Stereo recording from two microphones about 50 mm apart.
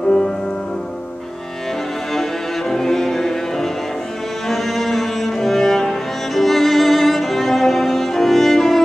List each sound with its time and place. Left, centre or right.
2.7 s music: centre
4.5 s cello: centre